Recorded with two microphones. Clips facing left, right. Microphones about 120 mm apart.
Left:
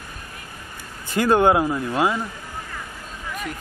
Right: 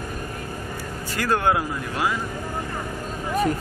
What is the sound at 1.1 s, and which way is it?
Speech, 20° left (ahead or behind).